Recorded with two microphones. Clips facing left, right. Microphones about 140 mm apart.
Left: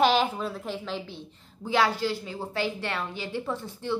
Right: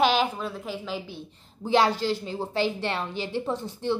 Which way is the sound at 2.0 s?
30° right (ahead or behind).